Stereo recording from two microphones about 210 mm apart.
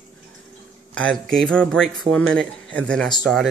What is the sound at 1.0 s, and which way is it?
Speech, 5° left (ahead or behind).